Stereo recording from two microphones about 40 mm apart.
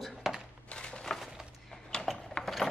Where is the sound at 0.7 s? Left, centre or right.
Left.